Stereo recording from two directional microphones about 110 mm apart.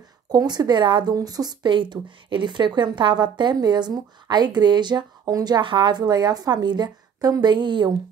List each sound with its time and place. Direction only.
0.3 s speech: 40° right (ahead or behind)